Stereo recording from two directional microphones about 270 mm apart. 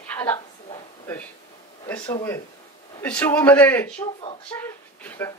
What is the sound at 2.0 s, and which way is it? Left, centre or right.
A woman's voice, centre.